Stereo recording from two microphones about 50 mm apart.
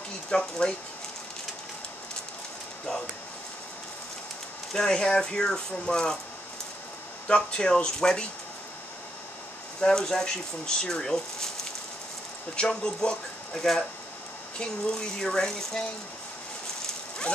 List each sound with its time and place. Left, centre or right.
0.3 s speech: left
4.7 s speech: centre
7.2 s speech: centre
9.8 s speech: centre
12.5 s speech: centre